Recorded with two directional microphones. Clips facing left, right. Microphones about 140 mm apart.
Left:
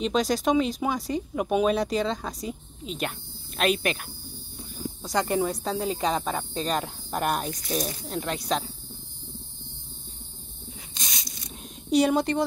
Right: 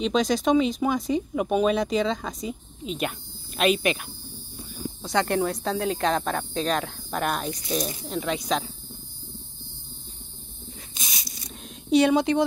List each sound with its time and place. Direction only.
0.0 s speech: 5° left (ahead or behind)
5.0 s speech: 5° left (ahead or behind)
11.0 s rub: 5° right (ahead or behind)